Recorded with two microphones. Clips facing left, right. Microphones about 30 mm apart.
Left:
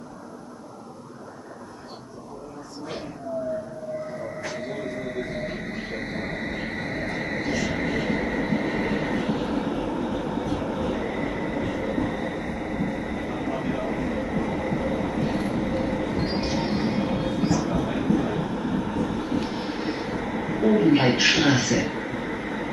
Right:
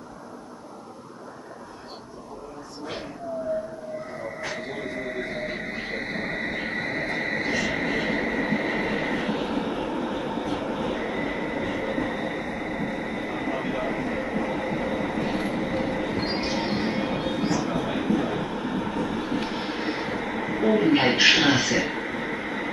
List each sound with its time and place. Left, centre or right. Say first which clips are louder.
4.4 s music: even; centre